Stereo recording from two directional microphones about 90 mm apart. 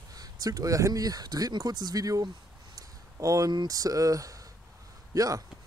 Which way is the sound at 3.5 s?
50° right (ahead or behind).